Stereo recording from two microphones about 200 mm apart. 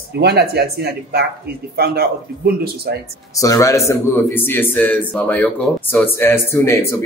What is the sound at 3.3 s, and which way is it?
A man's voice, 15° left (ahead or behind).